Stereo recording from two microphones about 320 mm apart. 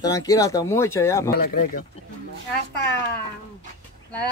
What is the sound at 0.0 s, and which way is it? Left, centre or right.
Speech, centre.